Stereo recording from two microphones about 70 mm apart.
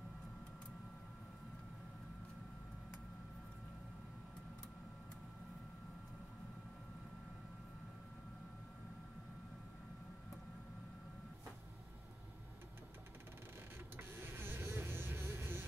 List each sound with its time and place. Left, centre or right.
13.9 s vehicle: right